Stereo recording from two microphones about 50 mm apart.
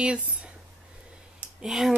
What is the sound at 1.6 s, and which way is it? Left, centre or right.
Speech, centre.